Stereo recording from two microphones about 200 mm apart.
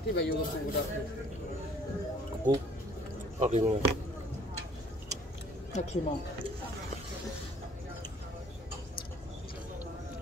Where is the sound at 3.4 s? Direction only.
35° right (ahead or behind).